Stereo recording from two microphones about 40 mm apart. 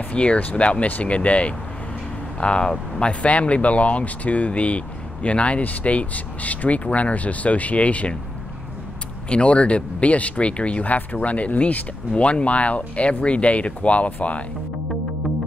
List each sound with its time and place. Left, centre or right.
0.1 s speech: left
0.8 s speech: left
1.1 s speech: left
5.6 s speech: left
9.3 s speech: left